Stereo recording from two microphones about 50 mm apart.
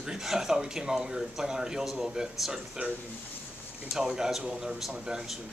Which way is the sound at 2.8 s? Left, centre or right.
Right.